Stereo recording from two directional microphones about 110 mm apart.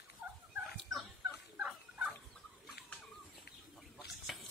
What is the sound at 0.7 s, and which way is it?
Fowl, centre (ahead or behind).